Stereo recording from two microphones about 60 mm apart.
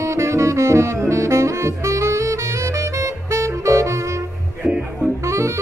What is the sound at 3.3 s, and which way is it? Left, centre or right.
Saxophone, right.